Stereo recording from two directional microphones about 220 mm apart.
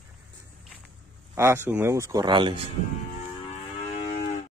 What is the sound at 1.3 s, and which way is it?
A man's voice, 10° right (ahead or behind).